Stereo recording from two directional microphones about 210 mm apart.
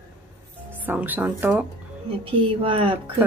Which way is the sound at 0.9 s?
10° right (ahead or behind).